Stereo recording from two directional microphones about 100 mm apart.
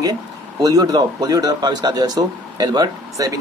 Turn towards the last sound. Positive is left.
turn(degrees=-40)  # may be behind; listen again after turning